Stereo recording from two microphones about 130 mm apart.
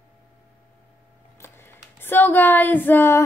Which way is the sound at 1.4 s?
20° left (ahead or behind).